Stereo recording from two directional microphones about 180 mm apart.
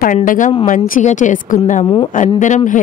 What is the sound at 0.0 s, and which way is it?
Speech, 45° left (ahead or behind).